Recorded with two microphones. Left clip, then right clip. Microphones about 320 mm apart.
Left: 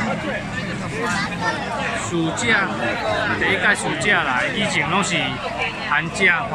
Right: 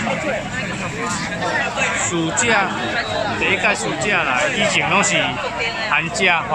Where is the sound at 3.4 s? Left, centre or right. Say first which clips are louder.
Right 1 dB; centre.